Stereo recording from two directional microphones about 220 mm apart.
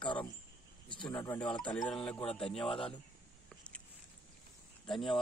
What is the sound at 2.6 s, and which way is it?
Speech, 25° left (ahead or behind).